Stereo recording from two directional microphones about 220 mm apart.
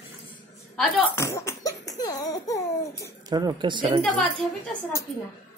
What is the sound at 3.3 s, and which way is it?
Speech, 20° right (ahead or behind).